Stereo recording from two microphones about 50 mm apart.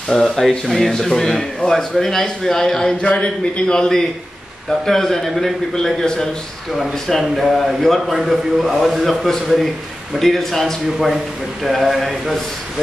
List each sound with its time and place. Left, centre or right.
0.1 s a man's voice: centre
3.0 s a man's voice: left; by 10.6 s centre
11.6 s a man's voice: centre